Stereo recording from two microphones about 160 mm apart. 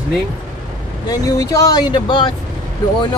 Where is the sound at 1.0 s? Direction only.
20° left (ahead or behind).